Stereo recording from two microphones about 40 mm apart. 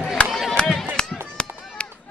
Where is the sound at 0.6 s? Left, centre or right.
Left.